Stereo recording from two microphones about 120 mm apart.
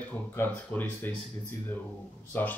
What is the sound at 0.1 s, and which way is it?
Speech, 15° left (ahead or behind).